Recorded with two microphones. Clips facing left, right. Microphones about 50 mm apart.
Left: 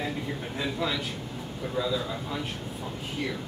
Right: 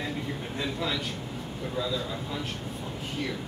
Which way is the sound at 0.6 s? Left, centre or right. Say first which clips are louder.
Left 1 dB; centre.